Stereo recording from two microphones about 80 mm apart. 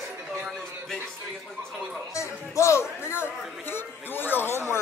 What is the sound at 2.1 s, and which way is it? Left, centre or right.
A man's voice, left.